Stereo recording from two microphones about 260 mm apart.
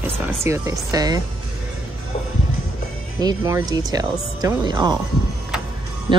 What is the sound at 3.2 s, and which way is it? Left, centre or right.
Speech, centre.